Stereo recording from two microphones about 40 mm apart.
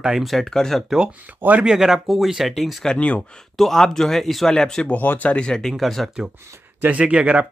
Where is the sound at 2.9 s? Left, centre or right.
Left.